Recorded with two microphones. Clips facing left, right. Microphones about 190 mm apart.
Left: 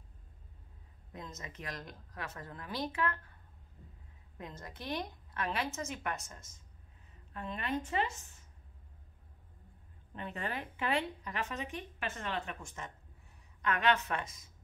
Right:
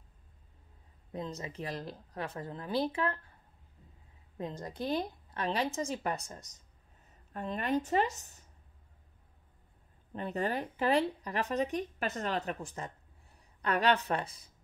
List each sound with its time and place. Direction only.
1.1 s speech: 30° right (ahead or behind)
4.4 s speech: 30° right (ahead or behind)
10.1 s speech: 40° right (ahead or behind)